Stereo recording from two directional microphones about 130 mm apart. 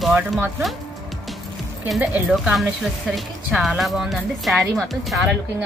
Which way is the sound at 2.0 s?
10° right (ahead or behind).